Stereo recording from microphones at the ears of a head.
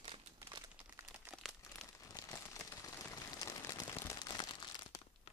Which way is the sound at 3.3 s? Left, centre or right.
Left.